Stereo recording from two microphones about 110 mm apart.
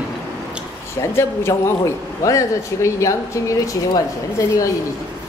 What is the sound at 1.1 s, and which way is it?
A man's voice, 25° left (ahead or behind).